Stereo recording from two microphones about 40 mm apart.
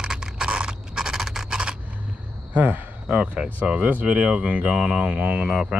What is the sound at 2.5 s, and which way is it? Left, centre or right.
Speech, right.